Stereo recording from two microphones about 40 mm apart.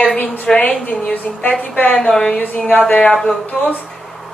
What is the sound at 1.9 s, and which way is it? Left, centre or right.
Speech, centre.